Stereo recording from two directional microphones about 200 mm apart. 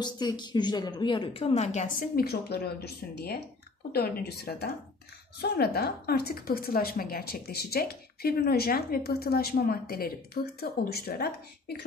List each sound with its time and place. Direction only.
0.0 s a woman's voice: 20° left (ahead or behind); by 11.8 s 50° left (ahead or behind)